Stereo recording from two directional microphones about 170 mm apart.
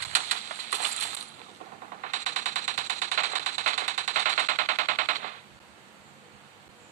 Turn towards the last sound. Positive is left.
turn(degrees=-45)  # may be behind; listen again after turning